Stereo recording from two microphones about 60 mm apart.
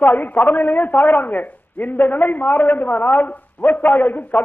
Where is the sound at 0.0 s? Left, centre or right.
Left.